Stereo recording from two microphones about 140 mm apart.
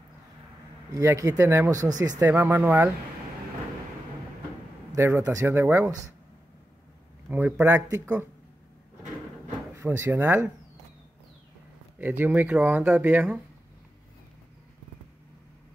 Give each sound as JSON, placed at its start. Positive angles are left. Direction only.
{"t": 0.9, "sound": "speech", "side_deg": -25}
{"t": 2.2, "sound": "speech", "side_deg": -15}
{"t": 4.9, "sound": "speech", "side_deg": -15}
{"t": 7.2, "sound": "speech", "side_deg": -15}
{"t": 9.8, "sound": "speech", "side_deg": -20}
{"t": 12.0, "sound": "speech", "side_deg": -10}